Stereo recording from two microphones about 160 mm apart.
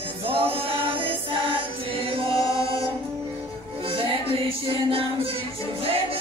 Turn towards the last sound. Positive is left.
turn(degrees=-35)  # may be behind; listen again after turning